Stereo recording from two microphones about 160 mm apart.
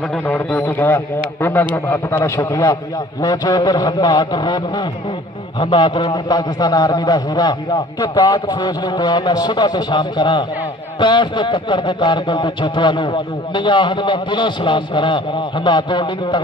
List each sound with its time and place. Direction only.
0.3 s speech: 10° left (ahead or behind); by 16.3 s 30° left (ahead or behind)